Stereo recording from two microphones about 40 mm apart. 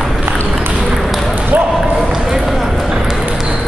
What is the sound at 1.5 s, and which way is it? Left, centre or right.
Basketball bounce, right.